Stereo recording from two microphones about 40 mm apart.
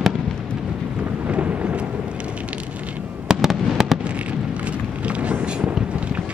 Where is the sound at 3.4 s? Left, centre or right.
Centre.